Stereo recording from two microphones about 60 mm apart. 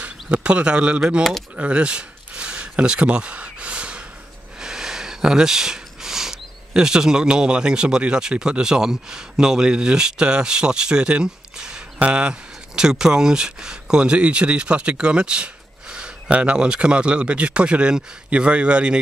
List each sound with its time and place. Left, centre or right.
0.0 s speech: right
1.6 s a sound: centre
4.6 s speech: centre